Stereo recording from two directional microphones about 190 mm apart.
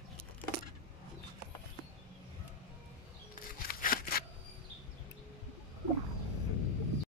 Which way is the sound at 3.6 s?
50° left (ahead or behind).